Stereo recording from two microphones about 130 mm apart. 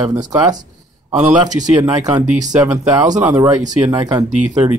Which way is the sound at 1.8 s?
30° right (ahead or behind).